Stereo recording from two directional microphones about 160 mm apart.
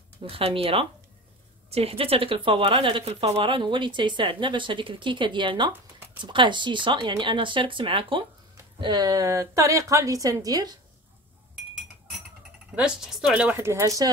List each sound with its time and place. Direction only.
0.2 s a woman's voice: 35° right (ahead or behind)
12.7 s speech: 5° right (ahead or behind); by 14.1 s 20° right (ahead or behind)